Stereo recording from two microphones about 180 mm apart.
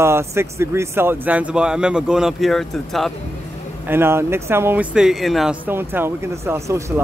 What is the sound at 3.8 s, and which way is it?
Speech, 15° right (ahead or behind).